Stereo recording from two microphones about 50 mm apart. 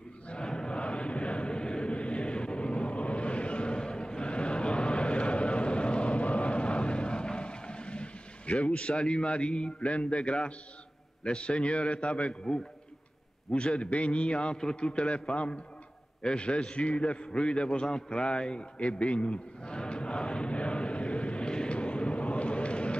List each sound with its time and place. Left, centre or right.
0.3 s chant: centre
8.9 s a man's voice: centre
16.2 s a sound: centre